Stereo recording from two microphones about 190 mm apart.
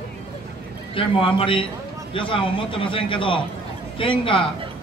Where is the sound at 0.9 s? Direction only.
30° left (ahead or behind).